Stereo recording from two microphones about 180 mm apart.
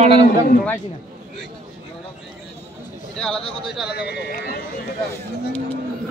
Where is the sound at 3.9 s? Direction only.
65° left (ahead or behind).